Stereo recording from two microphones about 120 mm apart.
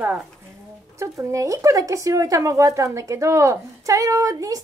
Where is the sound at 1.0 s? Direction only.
25° right (ahead or behind).